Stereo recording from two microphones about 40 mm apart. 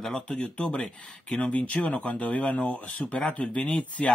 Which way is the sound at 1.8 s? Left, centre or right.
Left.